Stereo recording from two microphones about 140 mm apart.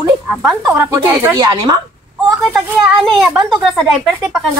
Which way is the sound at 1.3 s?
30° right (ahead or behind).